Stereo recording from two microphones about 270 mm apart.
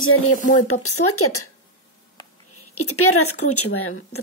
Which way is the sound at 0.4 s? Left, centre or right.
Left.